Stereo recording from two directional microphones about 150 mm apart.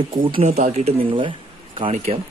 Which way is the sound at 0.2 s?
40° right (ahead or behind).